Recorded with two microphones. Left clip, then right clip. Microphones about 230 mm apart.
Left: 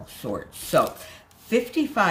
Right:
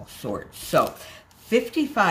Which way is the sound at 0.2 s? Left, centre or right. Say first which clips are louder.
Even; centre.